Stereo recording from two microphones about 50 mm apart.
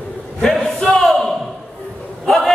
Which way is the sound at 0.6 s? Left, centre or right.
Centre.